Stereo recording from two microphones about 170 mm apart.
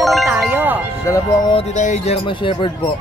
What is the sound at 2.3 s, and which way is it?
Speech, 30° left (ahead or behind).